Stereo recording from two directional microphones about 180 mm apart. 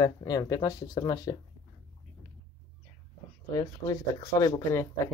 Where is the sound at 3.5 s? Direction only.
20° left (ahead or behind).